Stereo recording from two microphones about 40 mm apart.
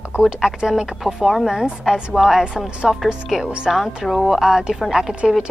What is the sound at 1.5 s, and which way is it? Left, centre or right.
Speech, centre.